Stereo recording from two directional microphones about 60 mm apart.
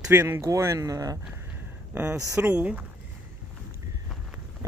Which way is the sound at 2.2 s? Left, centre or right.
Right.